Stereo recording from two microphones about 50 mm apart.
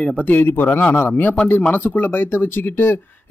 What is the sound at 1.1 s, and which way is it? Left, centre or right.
Speech, left.